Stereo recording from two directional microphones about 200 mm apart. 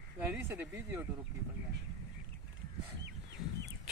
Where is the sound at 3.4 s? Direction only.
20° left (ahead or behind).